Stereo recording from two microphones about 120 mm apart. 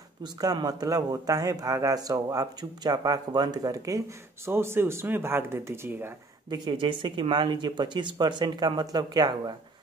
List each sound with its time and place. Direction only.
0.2 s speech: 35° right (ahead or behind); by 6.1 s 20° right (ahead or behind)
6.5 s speech: 40° right (ahead or behind)